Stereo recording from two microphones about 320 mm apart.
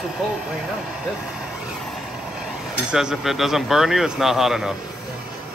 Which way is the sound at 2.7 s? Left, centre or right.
Centre.